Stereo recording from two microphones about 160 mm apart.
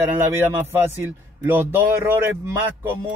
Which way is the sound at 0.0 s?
15° right (ahead or behind).